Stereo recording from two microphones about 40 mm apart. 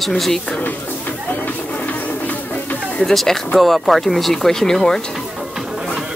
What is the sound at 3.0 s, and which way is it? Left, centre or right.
Speech, centre.